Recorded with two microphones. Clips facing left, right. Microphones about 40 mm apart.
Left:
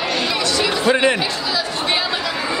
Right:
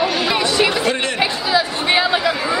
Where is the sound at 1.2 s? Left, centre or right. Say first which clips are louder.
Right 4 dB; centre.